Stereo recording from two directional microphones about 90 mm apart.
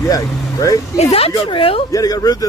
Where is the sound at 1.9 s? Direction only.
45° left (ahead or behind).